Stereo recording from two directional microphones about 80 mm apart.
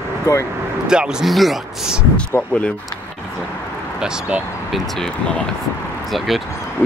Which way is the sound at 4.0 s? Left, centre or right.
Centre.